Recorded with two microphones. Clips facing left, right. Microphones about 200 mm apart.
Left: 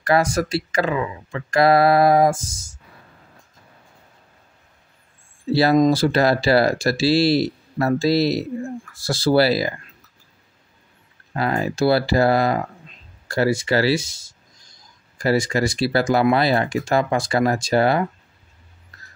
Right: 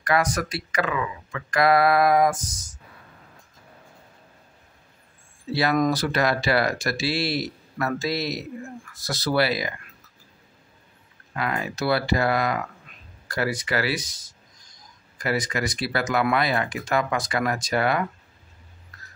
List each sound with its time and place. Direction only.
0.0 s speech: 30° left (ahead or behind)
5.5 s speech: 30° left (ahead or behind)
11.3 s speech: 35° left (ahead or behind)